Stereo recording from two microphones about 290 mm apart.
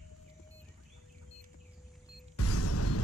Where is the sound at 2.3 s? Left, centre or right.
Left.